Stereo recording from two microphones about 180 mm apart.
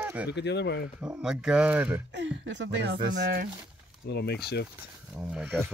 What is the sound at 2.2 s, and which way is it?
Speech, 85° right.